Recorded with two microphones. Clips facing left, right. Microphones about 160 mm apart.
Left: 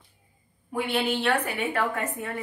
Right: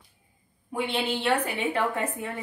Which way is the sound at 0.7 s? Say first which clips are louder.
Left 2 dB; 25° right (ahead or behind).